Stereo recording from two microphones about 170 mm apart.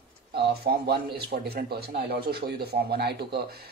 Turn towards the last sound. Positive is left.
turn(degrees=-70)  # may be behind; listen again after turning